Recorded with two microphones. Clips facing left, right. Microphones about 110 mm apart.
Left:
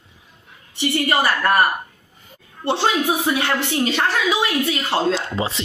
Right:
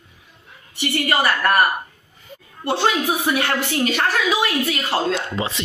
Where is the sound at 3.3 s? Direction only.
20° left (ahead or behind).